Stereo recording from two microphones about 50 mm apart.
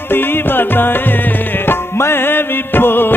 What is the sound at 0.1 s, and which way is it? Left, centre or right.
Music, left.